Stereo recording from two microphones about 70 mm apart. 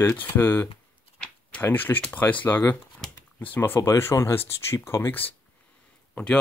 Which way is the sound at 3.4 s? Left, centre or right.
Left.